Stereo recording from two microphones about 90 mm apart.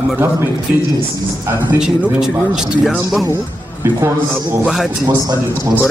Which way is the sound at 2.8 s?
Centre (ahead or behind).